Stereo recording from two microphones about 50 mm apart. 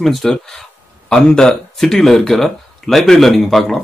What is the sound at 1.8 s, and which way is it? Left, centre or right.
Speech, centre.